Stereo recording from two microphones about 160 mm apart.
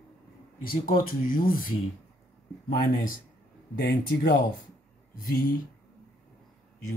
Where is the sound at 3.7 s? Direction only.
90° left.